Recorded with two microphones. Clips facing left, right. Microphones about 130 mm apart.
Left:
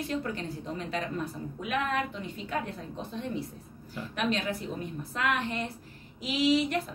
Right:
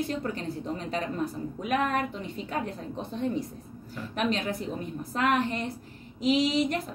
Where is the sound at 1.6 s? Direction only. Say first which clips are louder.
Right 3 dB; 40° right (ahead or behind).